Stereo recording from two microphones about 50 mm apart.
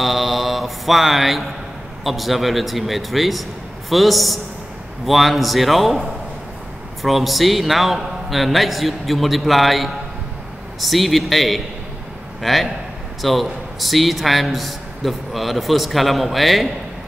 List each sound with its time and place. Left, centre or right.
0.0 s mantra: centre
2.0 s a man's voice: centre